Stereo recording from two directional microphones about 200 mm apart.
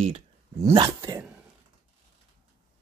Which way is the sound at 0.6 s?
20° right (ahead or behind).